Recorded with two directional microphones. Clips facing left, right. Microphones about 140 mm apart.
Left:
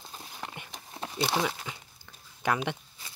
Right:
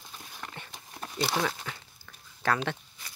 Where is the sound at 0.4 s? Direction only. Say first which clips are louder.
Left 2 dB; 20° left (ahead or behind).